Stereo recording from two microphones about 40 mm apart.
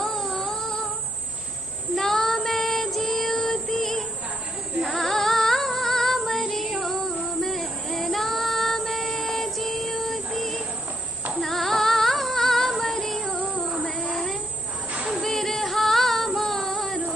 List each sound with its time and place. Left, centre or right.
0.2 s music: left
2.0 s child singing: centre
4.7 s female singing: centre
9.2 s music: centre
11.3 s female singing: centre
13.5 s music: centre
15.2 s female singing: centre